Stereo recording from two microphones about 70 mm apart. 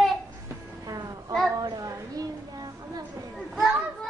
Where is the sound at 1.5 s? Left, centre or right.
Right.